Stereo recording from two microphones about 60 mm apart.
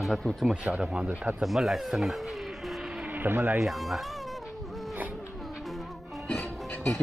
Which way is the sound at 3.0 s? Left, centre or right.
Right.